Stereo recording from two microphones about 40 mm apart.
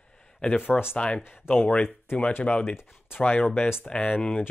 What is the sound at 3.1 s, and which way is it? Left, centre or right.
Speech, left.